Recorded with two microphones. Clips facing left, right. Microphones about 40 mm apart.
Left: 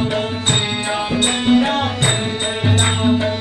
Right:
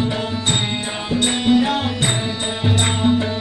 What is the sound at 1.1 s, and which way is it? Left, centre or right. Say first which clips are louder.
Music: even; left.